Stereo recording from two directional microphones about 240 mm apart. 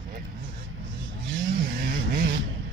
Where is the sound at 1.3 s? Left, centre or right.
Right.